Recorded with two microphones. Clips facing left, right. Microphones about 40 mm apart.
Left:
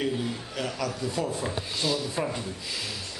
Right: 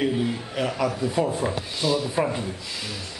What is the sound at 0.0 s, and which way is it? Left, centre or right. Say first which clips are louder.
A man's voice: right 5 dB; centre.